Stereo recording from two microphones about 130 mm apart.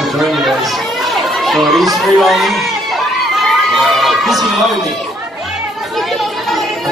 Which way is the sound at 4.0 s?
Centre (ahead or behind).